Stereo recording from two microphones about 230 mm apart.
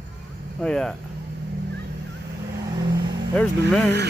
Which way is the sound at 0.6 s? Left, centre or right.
Centre.